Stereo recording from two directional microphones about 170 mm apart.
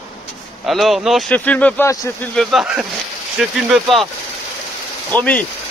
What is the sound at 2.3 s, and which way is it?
Speech, centre (ahead or behind).